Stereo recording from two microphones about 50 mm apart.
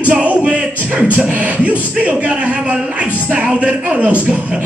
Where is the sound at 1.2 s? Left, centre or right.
Right.